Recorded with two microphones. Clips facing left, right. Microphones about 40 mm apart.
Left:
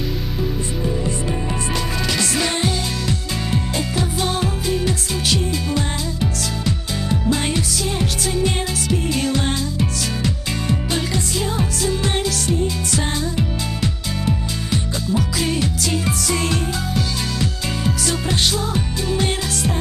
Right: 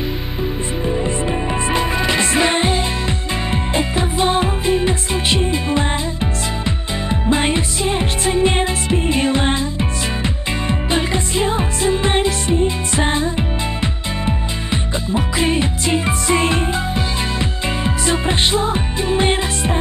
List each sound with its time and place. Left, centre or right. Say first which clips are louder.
0.8 s music: right 4 dB; right